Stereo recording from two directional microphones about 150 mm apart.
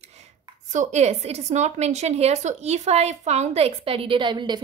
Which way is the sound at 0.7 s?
50° right (ahead or behind).